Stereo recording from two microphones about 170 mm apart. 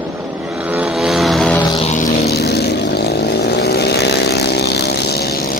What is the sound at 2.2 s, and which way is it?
Vehicle, 70° left (ahead or behind).